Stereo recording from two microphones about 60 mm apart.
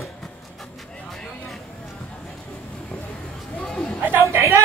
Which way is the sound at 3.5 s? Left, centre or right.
Centre.